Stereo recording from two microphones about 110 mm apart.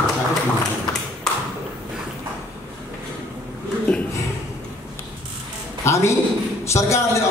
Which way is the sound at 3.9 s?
10° left (ahead or behind).